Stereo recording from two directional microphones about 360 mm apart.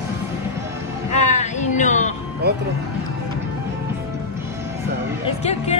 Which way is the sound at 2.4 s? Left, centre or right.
Right.